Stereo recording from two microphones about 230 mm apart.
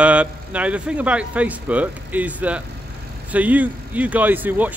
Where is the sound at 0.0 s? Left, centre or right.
Centre.